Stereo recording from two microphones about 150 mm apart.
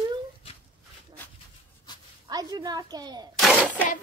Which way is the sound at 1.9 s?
30° left (ahead or behind).